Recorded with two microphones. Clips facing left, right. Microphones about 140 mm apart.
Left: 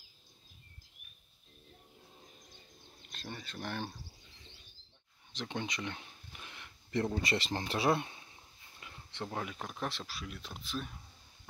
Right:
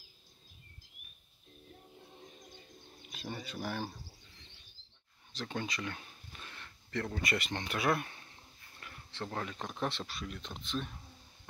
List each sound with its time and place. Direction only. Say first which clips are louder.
3.0 s speech: right 3 dB; 5° right (ahead or behind)
5.3 s speech: even; 20° left (ahead or behind)
8.1 s speech: even; 15° left (ahead or behind)